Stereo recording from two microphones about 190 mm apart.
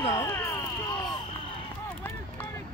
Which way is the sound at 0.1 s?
20° left (ahead or behind).